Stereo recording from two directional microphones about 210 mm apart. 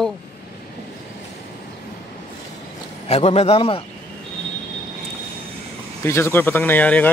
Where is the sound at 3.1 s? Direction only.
30° left (ahead or behind).